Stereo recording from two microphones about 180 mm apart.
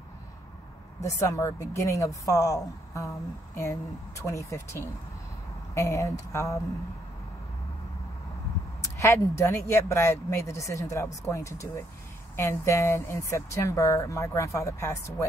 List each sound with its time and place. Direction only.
1.0 s speech: 15° left (ahead or behind)
8.8 s speech: 15° left (ahead or behind)